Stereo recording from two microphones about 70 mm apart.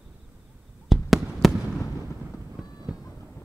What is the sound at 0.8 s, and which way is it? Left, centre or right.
Fireworks, centre.